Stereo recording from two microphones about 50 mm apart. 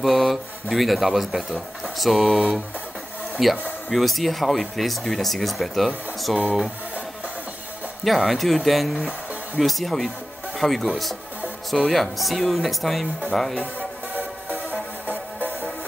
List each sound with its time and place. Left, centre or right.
0.0 s speech: centre
8.0 s speech: centre
14.1 s music: right